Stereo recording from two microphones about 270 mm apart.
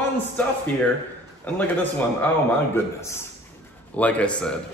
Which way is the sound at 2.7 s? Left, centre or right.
Centre.